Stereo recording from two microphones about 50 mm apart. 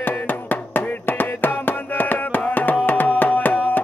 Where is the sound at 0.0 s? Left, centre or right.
Left.